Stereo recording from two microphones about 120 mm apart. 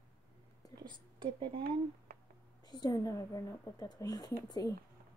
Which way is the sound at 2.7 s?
30° left (ahead or behind).